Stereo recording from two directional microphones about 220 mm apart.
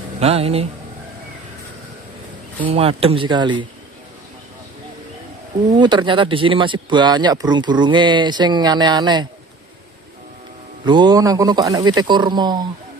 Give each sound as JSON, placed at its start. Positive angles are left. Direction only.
{"t": 0.2, "sound": "speech", "side_deg": -25}
{"t": 2.6, "sound": "speech", "side_deg": -25}
{"t": 5.8, "sound": "speech", "side_deg": -20}
{"t": 10.9, "sound": "speech", "side_deg": -20}